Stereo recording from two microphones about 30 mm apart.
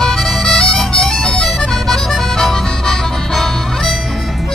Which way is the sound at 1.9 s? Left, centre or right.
Centre.